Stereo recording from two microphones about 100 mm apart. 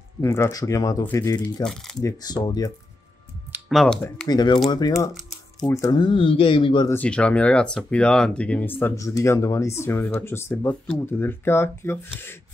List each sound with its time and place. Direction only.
0.2 s speech: 25° left (ahead or behind)
1.4 s speech: 5° left (ahead or behind)
2.0 s speech: 40° left (ahead or behind)
3.6 s speech: 5° left (ahead or behind)
4.3 s speech: 45° left (ahead or behind)
5.9 s speech: 55° left (ahead or behind)
7.0 s speech: 10° left (ahead or behind)
9.0 s speech: 30° left (ahead or behind)